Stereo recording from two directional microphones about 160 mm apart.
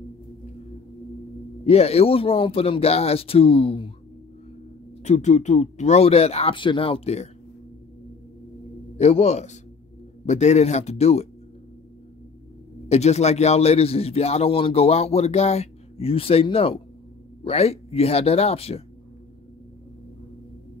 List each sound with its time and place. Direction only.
1.7 s a man's voice: 40° left (ahead or behind)
5.0 s a man's voice: 45° left (ahead or behind)
8.9 s speech: 40° left (ahead or behind)
12.8 s a man's voice: 40° left (ahead or behind)